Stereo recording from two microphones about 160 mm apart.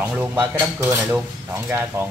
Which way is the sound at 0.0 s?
10° right (ahead or behind).